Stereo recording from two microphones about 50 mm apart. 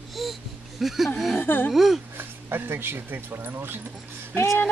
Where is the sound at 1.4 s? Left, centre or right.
Left.